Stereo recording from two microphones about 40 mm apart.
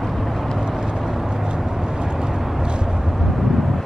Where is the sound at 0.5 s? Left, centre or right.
Centre.